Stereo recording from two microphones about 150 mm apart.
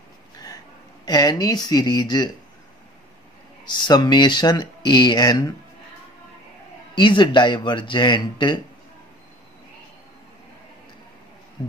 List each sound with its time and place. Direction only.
1.0 s speech: 25° left (ahead or behind)
3.6 s speech: 30° left (ahead or behind)
7.0 s speech: 30° left (ahead or behind)